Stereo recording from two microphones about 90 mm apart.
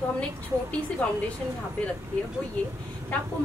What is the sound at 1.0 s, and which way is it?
Speech, 15° left (ahead or behind).